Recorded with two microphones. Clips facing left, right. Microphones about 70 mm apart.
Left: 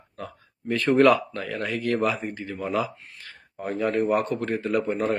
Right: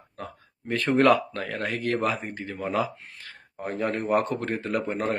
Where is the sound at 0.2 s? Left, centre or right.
Right.